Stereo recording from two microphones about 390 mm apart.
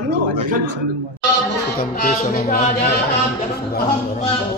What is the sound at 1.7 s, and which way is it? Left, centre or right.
Speech, left.